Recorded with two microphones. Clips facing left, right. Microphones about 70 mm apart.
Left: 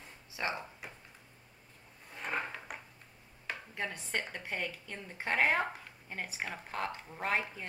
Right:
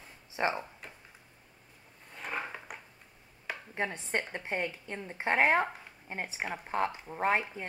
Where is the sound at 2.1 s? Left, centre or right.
Centre.